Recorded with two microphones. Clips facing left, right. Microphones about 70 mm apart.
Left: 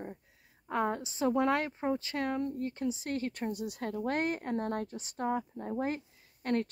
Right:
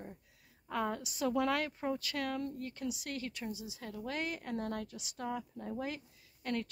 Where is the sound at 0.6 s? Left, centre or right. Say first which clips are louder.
Left 4 dB; left.